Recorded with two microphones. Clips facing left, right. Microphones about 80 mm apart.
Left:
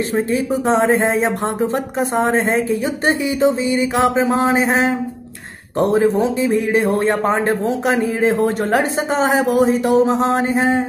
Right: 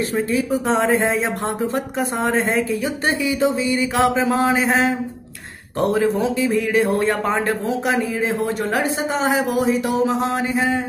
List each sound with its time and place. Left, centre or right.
0.1 s a man's voice: left